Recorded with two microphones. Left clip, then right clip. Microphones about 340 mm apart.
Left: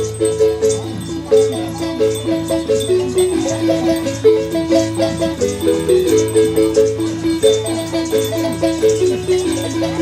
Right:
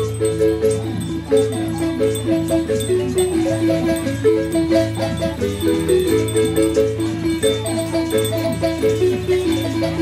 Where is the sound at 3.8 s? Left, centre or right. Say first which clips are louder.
Left 4 dB; centre.